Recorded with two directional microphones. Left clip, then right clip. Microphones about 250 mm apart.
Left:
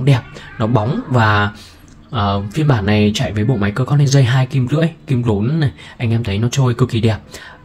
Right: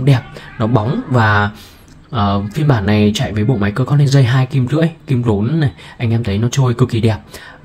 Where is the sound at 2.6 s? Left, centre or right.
Centre.